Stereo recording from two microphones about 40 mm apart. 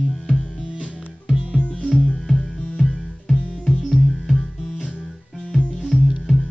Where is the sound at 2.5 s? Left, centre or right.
Left.